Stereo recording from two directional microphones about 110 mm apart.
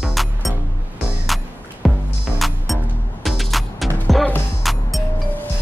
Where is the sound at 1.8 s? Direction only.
Centre (ahead or behind).